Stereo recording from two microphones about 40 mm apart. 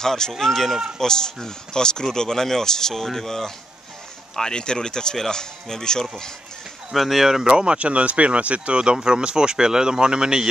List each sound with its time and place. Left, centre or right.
0.0 s speech: centre
6.9 s speech: centre
7.4 s speech: right